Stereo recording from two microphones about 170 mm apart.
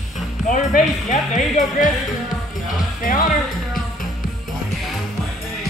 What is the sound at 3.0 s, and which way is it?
Speech, 55° left (ahead or behind).